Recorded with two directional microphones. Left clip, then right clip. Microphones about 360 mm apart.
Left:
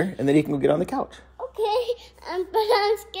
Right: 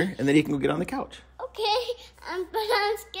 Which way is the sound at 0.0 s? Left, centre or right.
Centre.